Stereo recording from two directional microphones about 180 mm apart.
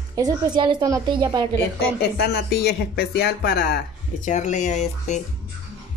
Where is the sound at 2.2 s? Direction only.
65° left (ahead or behind); by 5.1 s 40° left (ahead or behind).